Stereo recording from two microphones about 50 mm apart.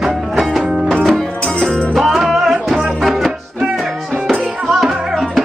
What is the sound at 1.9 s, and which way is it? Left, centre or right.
Music, centre.